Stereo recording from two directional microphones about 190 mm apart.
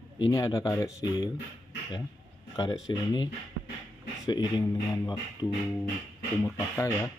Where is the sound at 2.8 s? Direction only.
25° left (ahead or behind).